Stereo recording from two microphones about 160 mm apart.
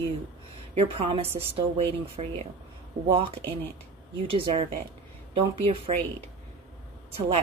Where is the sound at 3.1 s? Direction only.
30° right (ahead or behind).